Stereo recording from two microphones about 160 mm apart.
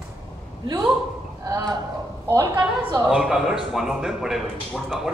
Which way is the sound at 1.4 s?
20° right (ahead or behind).